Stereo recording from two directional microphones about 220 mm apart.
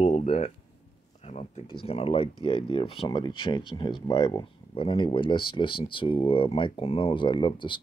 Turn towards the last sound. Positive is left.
turn(degrees=20)  # may be behind; listen again after turning